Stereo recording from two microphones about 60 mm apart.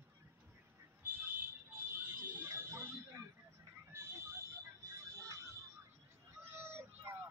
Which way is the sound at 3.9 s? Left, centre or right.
Right.